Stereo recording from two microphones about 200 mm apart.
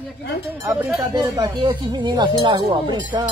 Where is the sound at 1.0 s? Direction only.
20° right (ahead or behind).